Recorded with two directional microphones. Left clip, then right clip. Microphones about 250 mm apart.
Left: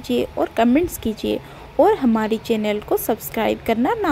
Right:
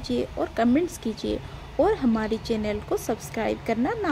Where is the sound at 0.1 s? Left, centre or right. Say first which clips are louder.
Left 7 dB; left.